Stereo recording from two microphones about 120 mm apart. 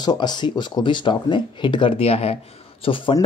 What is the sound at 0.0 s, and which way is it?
Speech, 35° left (ahead or behind).